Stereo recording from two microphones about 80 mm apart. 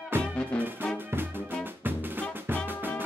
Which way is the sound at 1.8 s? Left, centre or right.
Right.